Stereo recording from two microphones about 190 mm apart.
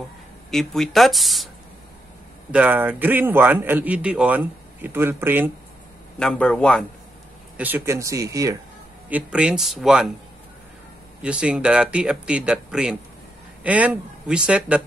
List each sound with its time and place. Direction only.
0.5 s speech: centre (ahead or behind)
2.5 s a man's voice: 10° right (ahead or behind)
6.1 s speech: 5° left (ahead or behind)
7.5 s a man's voice: 10° right (ahead or behind)
9.1 s speech: 5° right (ahead or behind)
11.2 s speech: 5° right (ahead or behind)